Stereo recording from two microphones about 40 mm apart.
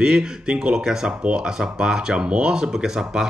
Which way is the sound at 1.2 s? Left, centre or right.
Right.